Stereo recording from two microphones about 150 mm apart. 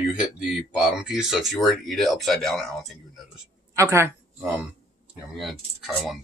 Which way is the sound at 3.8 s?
20° right (ahead or behind).